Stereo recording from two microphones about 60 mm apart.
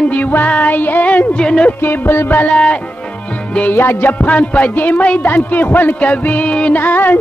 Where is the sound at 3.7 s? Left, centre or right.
Left.